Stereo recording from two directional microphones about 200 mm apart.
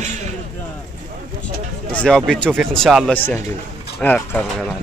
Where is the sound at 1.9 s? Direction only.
5° left (ahead or behind).